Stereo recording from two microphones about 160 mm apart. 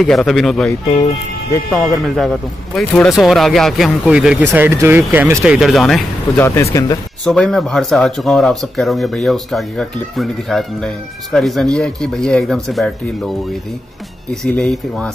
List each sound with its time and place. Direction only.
0.0 s speech: centre (ahead or behind)
6.3 s speech: 15° left (ahead or behind)
7.2 s speech: 5° left (ahead or behind)
14.3 s speech: 5° left (ahead or behind)